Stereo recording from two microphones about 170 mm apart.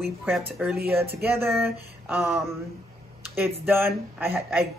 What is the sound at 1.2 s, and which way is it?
Speech, 15° right (ahead or behind).